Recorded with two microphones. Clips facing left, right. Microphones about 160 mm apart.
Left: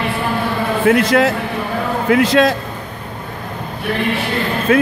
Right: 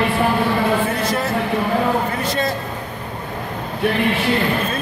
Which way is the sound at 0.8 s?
90° left.